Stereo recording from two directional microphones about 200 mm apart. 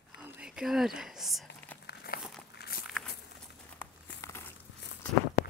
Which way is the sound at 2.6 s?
55° left (ahead or behind).